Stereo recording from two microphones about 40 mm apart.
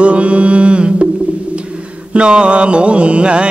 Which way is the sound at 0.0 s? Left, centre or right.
Right.